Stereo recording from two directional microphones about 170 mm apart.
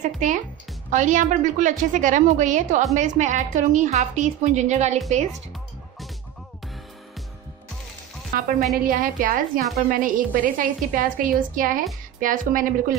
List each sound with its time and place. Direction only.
0.0 s a woman's voice: 50° right (ahead or behind)
8.4 s a woman's voice: 55° right (ahead or behind)